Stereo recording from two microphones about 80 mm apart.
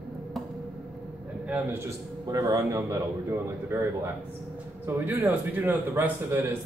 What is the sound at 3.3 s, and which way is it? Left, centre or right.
Speech, right.